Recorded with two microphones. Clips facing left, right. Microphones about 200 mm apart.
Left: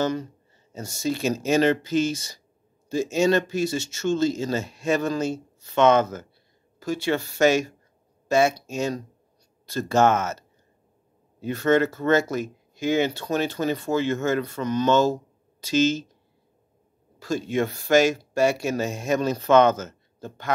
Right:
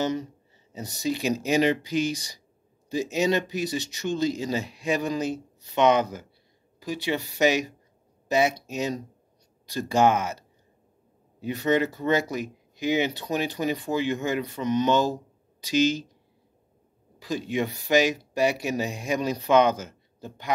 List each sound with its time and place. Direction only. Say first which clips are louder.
0.0 s speech: left 2 dB; 20° right (ahead or behind)
11.4 s speech: left 3 dB; 15° right (ahead or behind)
17.2 s speech: left 3 dB; 15° right (ahead or behind)